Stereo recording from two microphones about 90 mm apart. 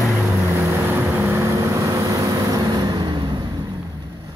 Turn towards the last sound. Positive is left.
turn(degrees=-55)  # may be behind; listen again after turning